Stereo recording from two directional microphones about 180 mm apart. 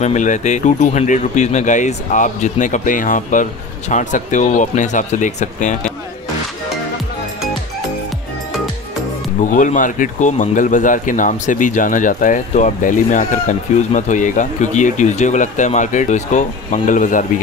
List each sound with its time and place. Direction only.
0.0 s speech: 40° left (ahead or behind)
9.4 s speech: 45° left (ahead or behind)